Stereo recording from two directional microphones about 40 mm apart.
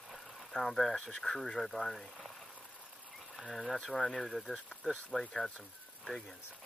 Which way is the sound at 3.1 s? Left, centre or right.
Centre.